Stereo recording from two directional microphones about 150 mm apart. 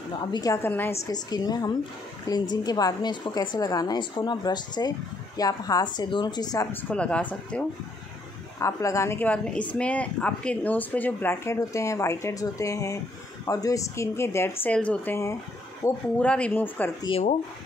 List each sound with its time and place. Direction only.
0.2 s a woman's voice: 25° left (ahead or behind)
0.6 s speech: 15° left (ahead or behind)
1.1 s a woman's voice: 25° left (ahead or behind)
6.7 s speech: 10° left (ahead or behind)
8.5 s a woman's voice: 20° left (ahead or behind)
16.2 s speech: 10° left (ahead or behind)